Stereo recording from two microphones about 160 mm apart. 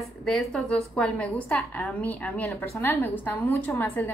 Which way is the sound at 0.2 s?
Centre (ahead or behind).